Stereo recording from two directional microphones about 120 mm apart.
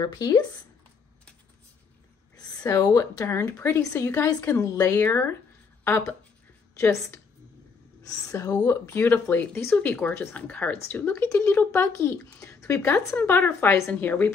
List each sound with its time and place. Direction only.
0.0 s speech: 35° left (ahead or behind)
2.3 s a woman's voice: 30° left (ahead or behind)
6.7 s a woman's voice: 25° left (ahead or behind)
8.3 s a woman's voice: 30° left (ahead or behind)